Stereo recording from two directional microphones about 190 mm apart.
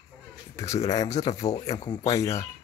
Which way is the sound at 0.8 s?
20° left (ahead or behind).